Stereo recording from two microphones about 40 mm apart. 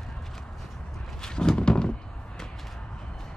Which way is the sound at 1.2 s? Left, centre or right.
Centre.